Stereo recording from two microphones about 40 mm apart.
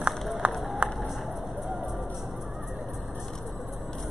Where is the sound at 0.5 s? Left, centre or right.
Centre.